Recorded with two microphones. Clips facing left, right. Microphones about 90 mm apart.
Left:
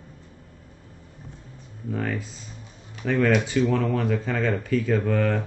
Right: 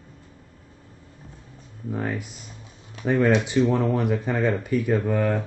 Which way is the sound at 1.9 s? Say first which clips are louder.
Even; 20° right (ahead or behind).